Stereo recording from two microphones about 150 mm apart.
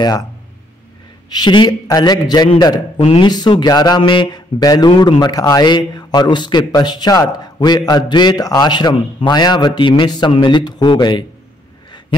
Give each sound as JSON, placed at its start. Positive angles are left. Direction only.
{"t": 1.3, "sound": "speech", "side_deg": 30}
{"t": 3.0, "sound": "speech", "side_deg": 40}
{"t": 3.3, "sound": "speech", "side_deg": 30}